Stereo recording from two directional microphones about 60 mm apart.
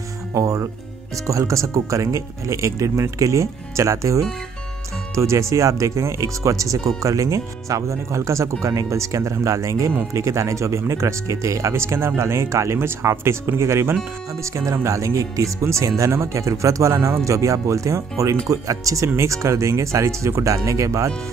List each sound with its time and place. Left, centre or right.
0.3 s speech: right
16.9 s speech: right
20.5 s speech: right